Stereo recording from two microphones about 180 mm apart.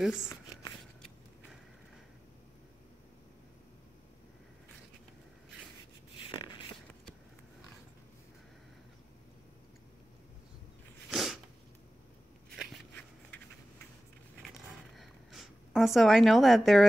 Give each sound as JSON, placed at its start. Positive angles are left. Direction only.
{"t": 0.0, "sound": "speech", "side_deg": -5}
{"t": 0.3, "sound": "shuffling cards", "side_deg": 20}
{"t": 6.1, "sound": "beatboxing", "side_deg": 25}
{"t": 11.1, "sound": "sneeze", "side_deg": -5}
{"t": 12.5, "sound": "a sound", "side_deg": 5}
{"t": 15.0, "sound": "a sound", "side_deg": 0}